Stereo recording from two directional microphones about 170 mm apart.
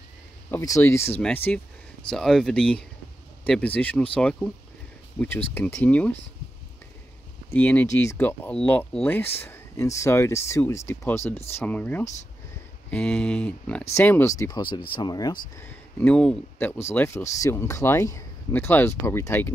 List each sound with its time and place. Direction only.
0.5 s speech: 20° left (ahead or behind)
5.7 s speech: 5° left (ahead or behind)
7.5 s speech: 10° left (ahead or behind)
15.5 s speech: 10° left (ahead or behind)